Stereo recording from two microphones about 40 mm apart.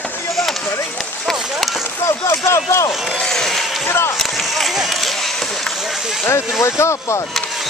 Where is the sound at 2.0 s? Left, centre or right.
Left.